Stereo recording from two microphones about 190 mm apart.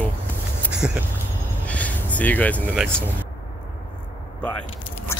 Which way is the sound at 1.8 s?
10° left (ahead or behind).